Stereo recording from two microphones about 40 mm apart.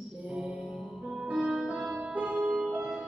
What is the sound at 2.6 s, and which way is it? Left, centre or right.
Music, right.